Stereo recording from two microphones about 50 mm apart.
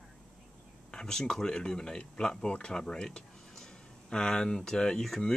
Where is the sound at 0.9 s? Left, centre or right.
Centre.